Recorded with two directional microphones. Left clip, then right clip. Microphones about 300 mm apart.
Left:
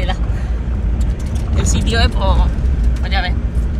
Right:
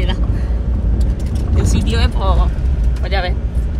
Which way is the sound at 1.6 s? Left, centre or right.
Centre.